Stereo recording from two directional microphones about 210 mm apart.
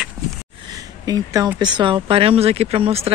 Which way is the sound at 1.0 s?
15° right (ahead or behind).